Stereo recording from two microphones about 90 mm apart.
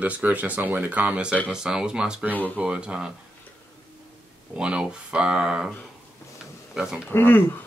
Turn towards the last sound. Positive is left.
turn(degrees=20)  # may be behind; listen again after turning